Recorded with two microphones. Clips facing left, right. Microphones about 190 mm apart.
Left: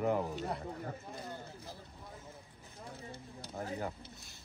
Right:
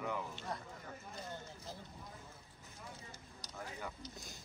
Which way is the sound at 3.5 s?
40° left (ahead or behind).